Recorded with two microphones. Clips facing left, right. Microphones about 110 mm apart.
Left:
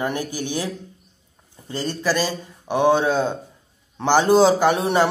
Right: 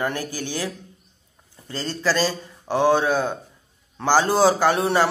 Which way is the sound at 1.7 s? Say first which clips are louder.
Left 1 dB; 15° left (ahead or behind).